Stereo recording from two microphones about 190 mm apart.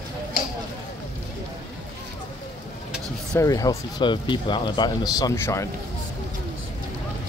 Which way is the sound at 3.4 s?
20° left (ahead or behind).